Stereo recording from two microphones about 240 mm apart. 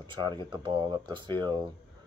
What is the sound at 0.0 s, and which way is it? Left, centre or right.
Speech, centre.